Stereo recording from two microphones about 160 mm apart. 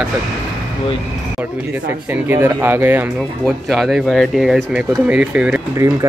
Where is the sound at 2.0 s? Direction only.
10° right (ahead or behind).